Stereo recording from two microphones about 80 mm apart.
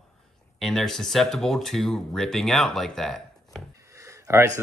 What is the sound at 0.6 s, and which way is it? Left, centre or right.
Speech, centre.